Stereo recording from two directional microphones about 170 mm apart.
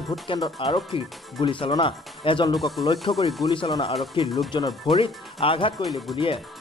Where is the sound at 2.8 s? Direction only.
30° left (ahead or behind).